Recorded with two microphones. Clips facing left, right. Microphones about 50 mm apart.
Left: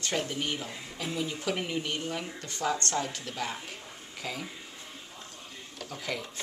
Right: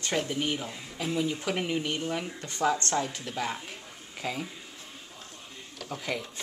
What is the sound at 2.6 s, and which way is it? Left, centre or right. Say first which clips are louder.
Speech: right 3 dB; centre.